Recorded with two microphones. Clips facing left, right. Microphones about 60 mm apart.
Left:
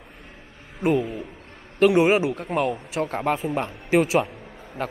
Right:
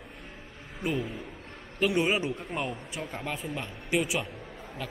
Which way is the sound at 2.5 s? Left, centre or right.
Left.